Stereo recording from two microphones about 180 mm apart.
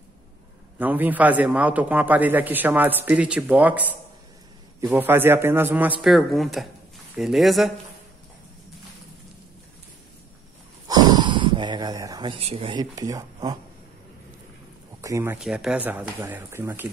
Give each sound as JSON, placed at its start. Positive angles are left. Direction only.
{"t": 0.7, "sound": "a man's voice", "side_deg": -10}
{"t": 10.9, "sound": "speech", "side_deg": -20}
{"t": 15.0, "sound": "speech", "side_deg": -15}
{"t": 15.3, "sound": "a man's voice", "side_deg": -5}